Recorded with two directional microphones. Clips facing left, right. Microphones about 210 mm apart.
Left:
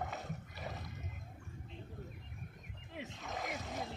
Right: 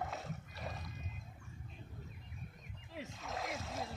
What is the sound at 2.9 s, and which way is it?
Splash, centre (ahead or behind).